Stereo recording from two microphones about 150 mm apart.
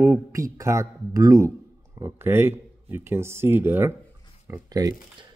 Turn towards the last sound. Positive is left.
turn(degrees=-25)  # may be behind; listen again after turning